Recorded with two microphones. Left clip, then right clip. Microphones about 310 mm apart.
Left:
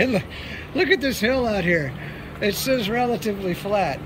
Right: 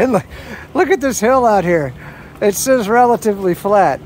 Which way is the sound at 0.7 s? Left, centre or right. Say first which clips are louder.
Right 6 dB; centre.